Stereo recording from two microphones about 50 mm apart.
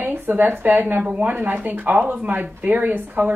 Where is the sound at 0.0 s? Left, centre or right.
Right.